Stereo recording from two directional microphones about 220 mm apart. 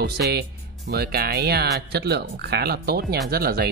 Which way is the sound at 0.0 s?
45° right (ahead or behind).